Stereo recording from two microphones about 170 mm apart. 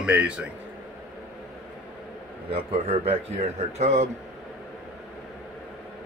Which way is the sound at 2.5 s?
35° right (ahead or behind).